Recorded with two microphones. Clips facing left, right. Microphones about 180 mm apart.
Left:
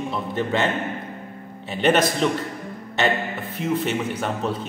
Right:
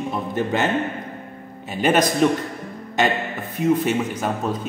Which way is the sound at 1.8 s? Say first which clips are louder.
Right 1 dB; 10° right (ahead or behind).